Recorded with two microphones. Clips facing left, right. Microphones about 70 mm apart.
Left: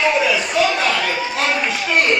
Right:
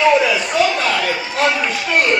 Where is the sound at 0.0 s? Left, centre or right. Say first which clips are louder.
Right 3 dB; right.